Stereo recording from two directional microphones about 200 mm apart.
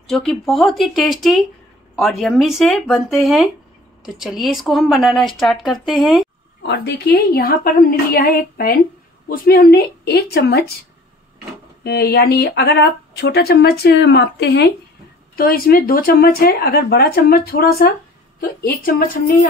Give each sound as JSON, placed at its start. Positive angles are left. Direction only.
{"t": 0.1, "sound": "speech", "side_deg": 0}
{"t": 6.6, "sound": "speech", "side_deg": 55}
{"t": 11.8, "sound": "speech", "side_deg": 55}